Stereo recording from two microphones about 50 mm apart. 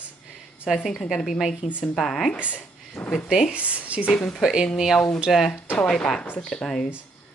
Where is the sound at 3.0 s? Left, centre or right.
Left.